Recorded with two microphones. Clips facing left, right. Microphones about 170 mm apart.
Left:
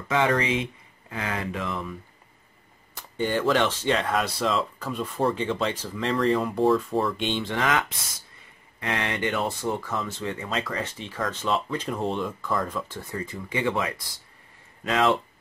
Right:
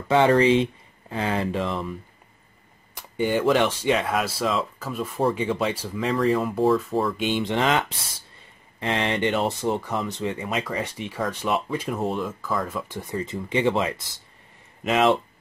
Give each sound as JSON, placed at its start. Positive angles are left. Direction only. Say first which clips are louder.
{"t": 0.1, "sound": "speech", "louder": "right 6 dB", "side_deg": -30}
{"t": 2.9, "sound": "speech", "louder": "right 3 dB", "side_deg": -10}
{"t": 7.4, "sound": "speech", "louder": "right 3 dB", "side_deg": -25}
{"t": 12.8, "sound": "speech", "louder": "right 4 dB", "side_deg": -15}